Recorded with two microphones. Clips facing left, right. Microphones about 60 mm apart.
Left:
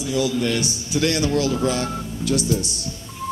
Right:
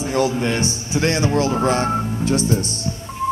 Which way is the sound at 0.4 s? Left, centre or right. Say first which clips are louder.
Right 2 dB; right.